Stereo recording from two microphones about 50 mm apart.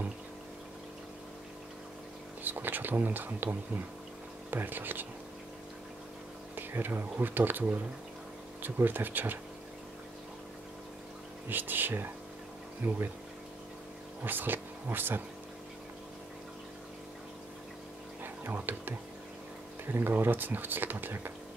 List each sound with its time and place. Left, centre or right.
2.4 s speech: right
4.5 s speech: right
6.5 s speech: right
11.4 s speech: right
14.2 s speech: right
18.2 s a sound: right
19.9 s speech: right